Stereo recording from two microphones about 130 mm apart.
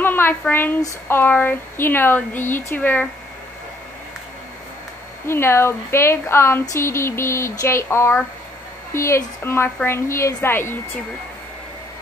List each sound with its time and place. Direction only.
0.0 s speech: 15° left (ahead or behind)
5.2 s speech: 20° left (ahead or behind)